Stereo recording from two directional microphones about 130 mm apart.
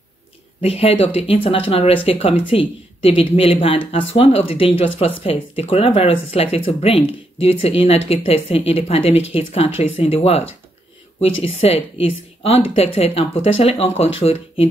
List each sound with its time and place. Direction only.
0.6 s speech: 50° left (ahead or behind)